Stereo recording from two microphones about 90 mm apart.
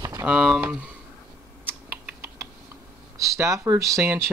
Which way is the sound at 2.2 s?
35° right (ahead or behind).